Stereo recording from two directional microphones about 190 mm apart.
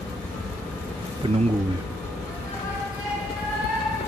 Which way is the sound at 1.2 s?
30° right (ahead or behind).